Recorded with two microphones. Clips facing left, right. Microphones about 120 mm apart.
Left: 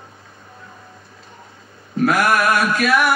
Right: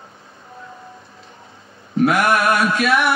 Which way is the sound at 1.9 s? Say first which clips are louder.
Right 1 dB; 30° right (ahead or behind).